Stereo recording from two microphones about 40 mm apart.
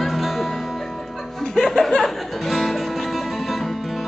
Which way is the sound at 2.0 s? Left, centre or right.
Centre.